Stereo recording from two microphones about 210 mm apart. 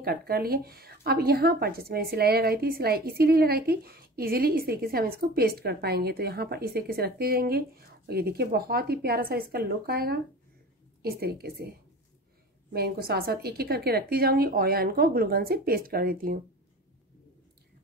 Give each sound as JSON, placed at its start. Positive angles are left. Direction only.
{"t": 0.0, "sound": "a woman's voice", "side_deg": -45}
{"t": 12.7, "sound": "a woman's voice", "side_deg": -50}